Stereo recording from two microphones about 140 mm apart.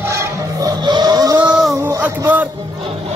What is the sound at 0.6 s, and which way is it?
Vehicle, 30° right (ahead or behind).